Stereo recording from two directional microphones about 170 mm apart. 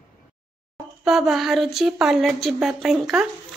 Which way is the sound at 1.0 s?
Centre (ahead or behind).